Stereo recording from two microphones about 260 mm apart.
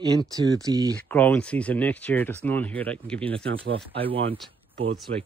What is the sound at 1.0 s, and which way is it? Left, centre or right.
Speech, centre.